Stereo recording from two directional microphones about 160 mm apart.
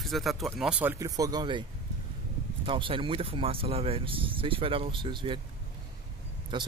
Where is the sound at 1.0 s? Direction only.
25° right (ahead or behind).